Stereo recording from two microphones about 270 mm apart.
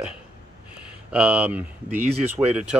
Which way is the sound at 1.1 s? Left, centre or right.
Centre.